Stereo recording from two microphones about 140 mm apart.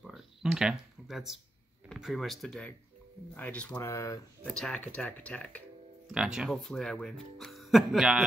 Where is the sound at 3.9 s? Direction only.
25° left (ahead or behind).